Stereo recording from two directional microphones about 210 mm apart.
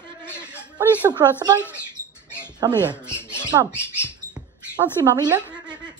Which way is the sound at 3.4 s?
20° right (ahead or behind).